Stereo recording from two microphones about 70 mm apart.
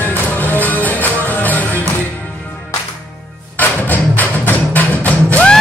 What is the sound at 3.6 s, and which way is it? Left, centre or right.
Music, left.